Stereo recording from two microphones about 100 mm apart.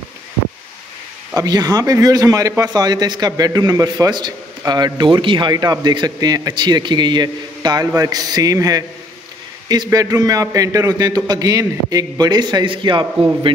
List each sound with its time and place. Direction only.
1.3 s a man's voice: 40° right (ahead or behind)
9.8 s a man's voice: 40° right (ahead or behind); by 13.0 s 55° right (ahead or behind)